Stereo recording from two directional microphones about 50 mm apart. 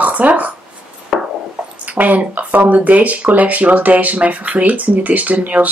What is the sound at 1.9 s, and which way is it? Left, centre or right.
Speech, right.